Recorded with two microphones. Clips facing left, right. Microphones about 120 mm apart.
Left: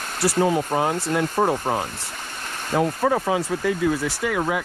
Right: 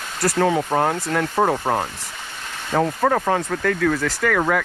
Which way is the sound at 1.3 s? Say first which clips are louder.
Right 4 dB; 15° right (ahead or behind).